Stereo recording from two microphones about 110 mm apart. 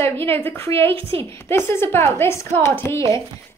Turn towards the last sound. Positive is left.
turn(degrees=25)  # may be behind; listen again after turning